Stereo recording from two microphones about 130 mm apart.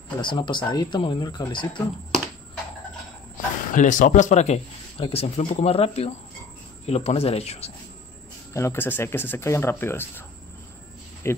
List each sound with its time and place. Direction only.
0.2 s speech: 35° left (ahead or behind)
3.7 s speech: 85° left; by 4.6 s 60° left (ahead or behind)
4.9 s speech: 45° left (ahead or behind)
8.5 s speech: 20° left (ahead or behind)
11.3 s speech: 20° left (ahead or behind)